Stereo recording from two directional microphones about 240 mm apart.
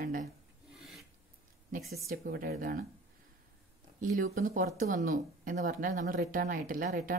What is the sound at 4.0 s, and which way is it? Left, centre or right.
Speech, right.